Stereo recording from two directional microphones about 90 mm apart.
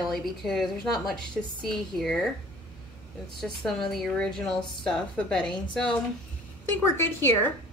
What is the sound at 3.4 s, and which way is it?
A woman's voice, 5° left (ahead or behind).